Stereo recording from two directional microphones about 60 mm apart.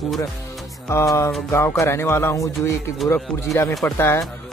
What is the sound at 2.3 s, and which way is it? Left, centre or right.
Speech, left.